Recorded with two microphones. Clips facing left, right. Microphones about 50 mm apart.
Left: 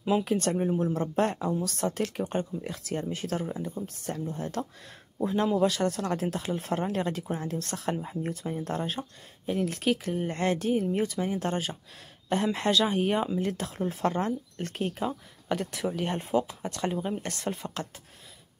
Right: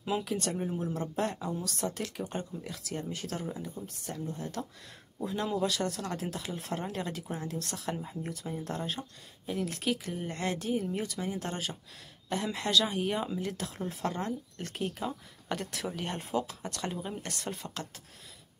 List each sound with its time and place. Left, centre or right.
0.2 s speech: left
15.4 s speech: centre
17.2 s speech: left